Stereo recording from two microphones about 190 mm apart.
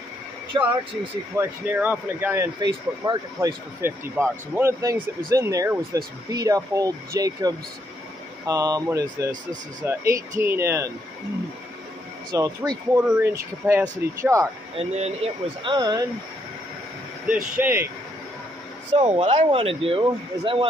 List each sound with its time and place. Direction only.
0.5 s speech: 25° right (ahead or behind)
1.3 s speech: 10° right (ahead or behind)
12.3 s speech: 20° right (ahead or behind)
14.8 s speech: 35° right (ahead or behind)
17.6 s speech: 10° right (ahead or behind)
18.9 s speech: 30° right (ahead or behind)